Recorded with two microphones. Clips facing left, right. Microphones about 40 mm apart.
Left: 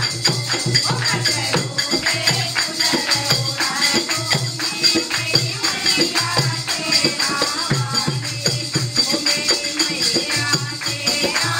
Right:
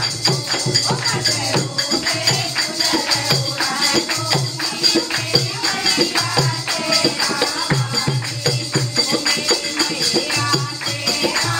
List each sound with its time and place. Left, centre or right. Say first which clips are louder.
2.0 s music: even; centre
3.3 s music: right 1 dB; centre
7.3 s music: right 1 dB; centre
11.1 s music: right 1 dB; centre